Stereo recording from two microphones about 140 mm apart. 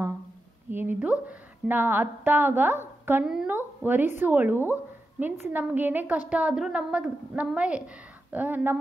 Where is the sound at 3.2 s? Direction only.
5° right (ahead or behind).